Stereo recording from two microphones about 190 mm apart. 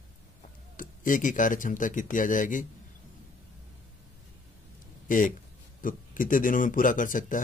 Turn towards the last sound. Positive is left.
turn(degrees=45)  # may be behind; listen again after turning